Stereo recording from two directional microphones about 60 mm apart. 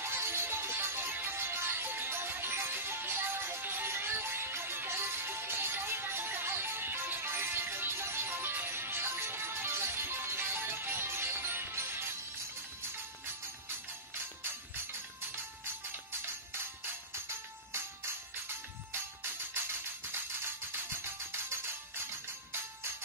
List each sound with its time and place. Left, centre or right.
0.0 s music: right
21.0 s music: right